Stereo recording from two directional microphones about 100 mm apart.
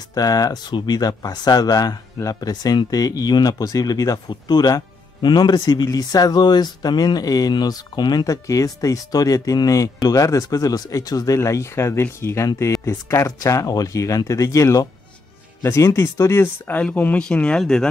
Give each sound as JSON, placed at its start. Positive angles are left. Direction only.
{"t": 0.1, "sound": "speech", "side_deg": 40}